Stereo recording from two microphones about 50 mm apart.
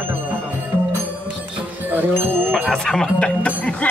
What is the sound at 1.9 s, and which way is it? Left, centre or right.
Speech, right.